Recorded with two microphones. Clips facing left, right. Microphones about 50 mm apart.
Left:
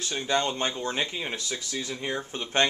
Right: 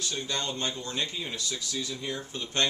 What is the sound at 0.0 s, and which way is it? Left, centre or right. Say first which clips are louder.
Speech: left 6 dB; left.